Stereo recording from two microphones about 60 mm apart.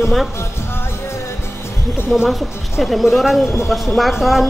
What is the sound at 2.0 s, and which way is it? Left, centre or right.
Speech, left.